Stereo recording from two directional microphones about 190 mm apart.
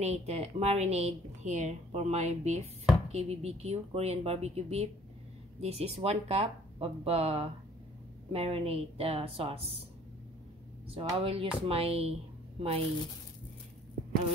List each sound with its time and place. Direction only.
0.0 s a woman's voice: 35° right (ahead or behind)
11.2 s a woman's voice: 30° right (ahead or behind)